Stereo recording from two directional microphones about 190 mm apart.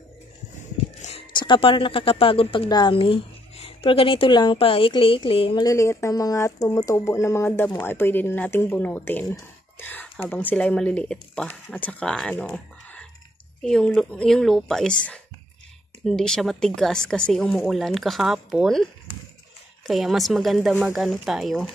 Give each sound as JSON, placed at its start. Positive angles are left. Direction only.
{"t": 1.0, "sound": "speech", "side_deg": 30}
{"t": 19.9, "sound": "speech", "side_deg": 0}